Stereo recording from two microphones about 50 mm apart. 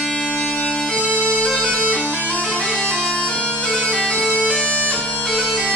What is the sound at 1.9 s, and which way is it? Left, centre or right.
Bagpipes, left.